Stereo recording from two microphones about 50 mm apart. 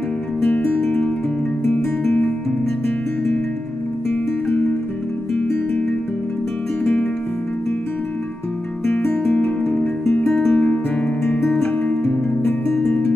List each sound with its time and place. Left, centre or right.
4.1 s music: left
9.1 s music: left
10.5 s music: left
11.4 s music: centre